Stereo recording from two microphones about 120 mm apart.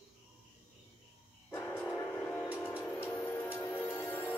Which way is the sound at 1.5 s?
20° left (ahead or behind).